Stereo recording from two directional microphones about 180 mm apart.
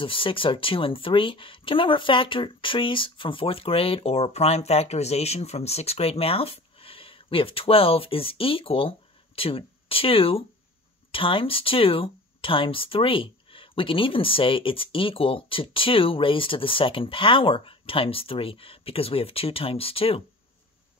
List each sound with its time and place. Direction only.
0.0 s speech: 30° left (ahead or behind)